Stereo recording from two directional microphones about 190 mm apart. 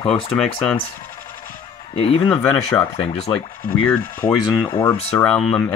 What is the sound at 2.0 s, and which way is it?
Speech, 30° left (ahead or behind).